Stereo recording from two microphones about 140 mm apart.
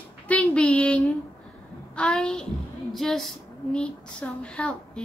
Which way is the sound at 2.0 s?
5° left (ahead or behind).